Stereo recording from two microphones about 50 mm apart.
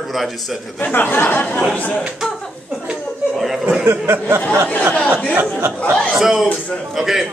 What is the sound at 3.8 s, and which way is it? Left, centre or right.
Speech, right.